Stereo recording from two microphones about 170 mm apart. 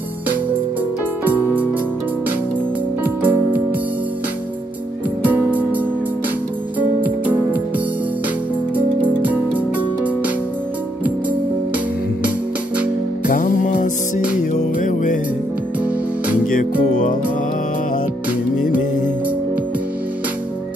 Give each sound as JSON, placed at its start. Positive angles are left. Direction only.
{"t": 1.2, "sound": "music", "side_deg": -10}
{"t": 3.0, "sound": "music", "side_deg": -10}
{"t": 5.2, "sound": "music", "side_deg": -10}
{"t": 8.7, "sound": "music", "side_deg": -10}
{"t": 13.3, "sound": "music", "side_deg": 55}
{"t": 16.5, "sound": "music", "side_deg": 50}